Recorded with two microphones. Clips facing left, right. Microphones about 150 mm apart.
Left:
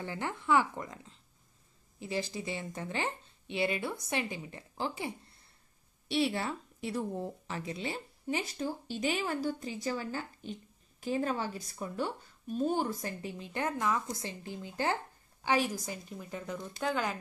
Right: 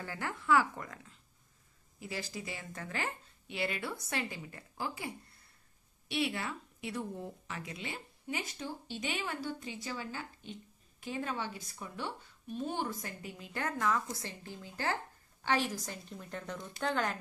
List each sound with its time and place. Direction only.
0.0 s a woman's voice: 20° left (ahead or behind); by 17.2 s 5° left (ahead or behind)